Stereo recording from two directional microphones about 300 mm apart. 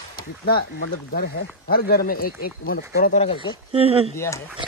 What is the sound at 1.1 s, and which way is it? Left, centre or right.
Speech, left.